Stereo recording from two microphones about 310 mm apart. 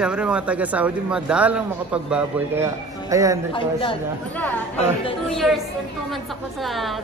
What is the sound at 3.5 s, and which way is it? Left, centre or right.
Speech, centre.